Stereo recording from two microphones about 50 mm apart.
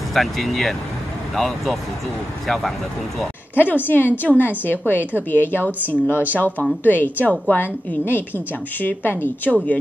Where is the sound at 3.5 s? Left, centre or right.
Left.